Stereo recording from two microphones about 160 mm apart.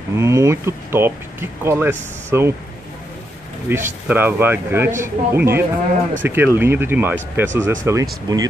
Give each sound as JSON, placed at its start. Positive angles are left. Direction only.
{"t": 0.1, "sound": "speech", "side_deg": -20}
{"t": 3.6, "sound": "speech", "side_deg": -15}